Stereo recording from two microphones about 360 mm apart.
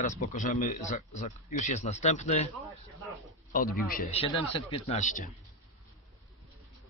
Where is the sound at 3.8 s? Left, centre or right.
Centre.